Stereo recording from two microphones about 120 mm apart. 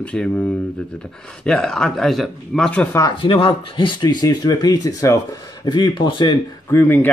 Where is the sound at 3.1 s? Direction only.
50° left (ahead or behind).